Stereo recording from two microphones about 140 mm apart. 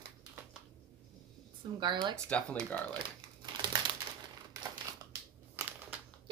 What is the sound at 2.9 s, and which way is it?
Crumpling, 35° right (ahead or behind).